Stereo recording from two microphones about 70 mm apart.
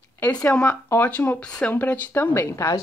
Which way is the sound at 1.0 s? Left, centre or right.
Left.